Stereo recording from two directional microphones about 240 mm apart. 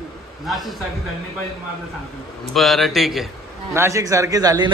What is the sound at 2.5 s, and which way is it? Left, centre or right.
Speech, centre.